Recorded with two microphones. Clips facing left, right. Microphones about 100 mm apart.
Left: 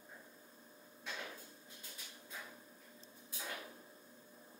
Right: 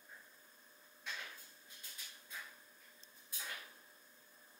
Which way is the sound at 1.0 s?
20° left (ahead or behind).